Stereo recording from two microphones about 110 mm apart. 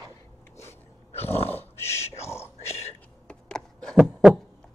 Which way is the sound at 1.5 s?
20° left (ahead or behind).